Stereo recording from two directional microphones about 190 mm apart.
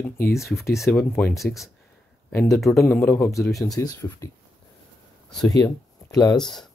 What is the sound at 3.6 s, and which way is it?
Speech, 20° left (ahead or behind).